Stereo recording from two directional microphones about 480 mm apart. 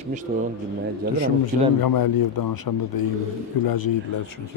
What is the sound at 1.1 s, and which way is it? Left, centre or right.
A man's voice, left.